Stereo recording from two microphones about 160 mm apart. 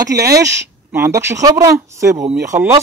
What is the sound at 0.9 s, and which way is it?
Speech, 15° right (ahead or behind).